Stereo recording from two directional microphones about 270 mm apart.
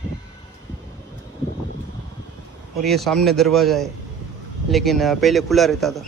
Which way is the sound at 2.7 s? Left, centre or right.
Centre.